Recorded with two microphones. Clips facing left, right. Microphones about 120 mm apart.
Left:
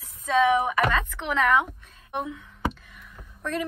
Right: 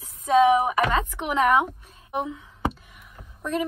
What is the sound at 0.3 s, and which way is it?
A woman's voice, 15° right (ahead or behind).